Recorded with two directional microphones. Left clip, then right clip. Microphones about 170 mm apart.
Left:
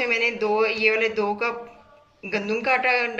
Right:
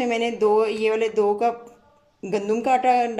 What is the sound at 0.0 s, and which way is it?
Speech, 45° right (ahead or behind).